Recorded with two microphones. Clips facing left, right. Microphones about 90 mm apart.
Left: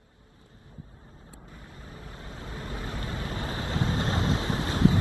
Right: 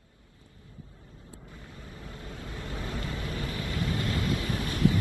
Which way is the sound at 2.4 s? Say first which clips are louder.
Left 1 dB; 30° left (ahead or behind).